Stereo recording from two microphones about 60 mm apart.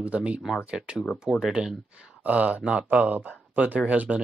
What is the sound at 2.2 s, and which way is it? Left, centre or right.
Speech, right.